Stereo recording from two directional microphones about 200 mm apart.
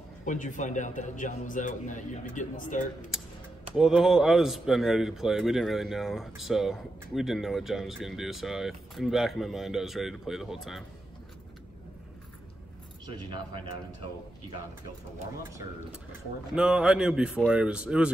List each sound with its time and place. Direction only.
0.2 s a man's voice: 40° left (ahead or behind)
3.7 s speech: centre (ahead or behind)
16.5 s speech: 5° right (ahead or behind)